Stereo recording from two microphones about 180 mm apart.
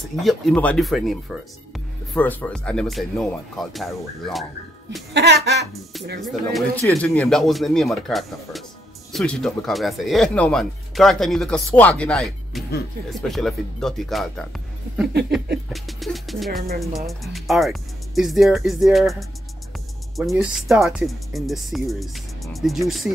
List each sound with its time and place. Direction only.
0.1 s speech: centre (ahead or behind)
5.1 s speech: 70° right (ahead or behind)
6.2 s speech: centre (ahead or behind)
15.5 s speech: centre (ahead or behind)